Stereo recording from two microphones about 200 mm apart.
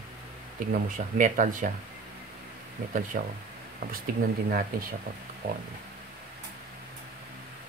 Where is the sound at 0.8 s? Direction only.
40° right (ahead or behind).